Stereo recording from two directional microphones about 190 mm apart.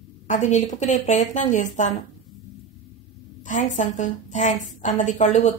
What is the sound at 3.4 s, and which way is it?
Speech, 40° left (ahead or behind).